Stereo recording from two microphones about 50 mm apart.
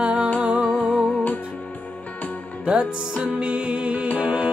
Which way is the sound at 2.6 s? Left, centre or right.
Right.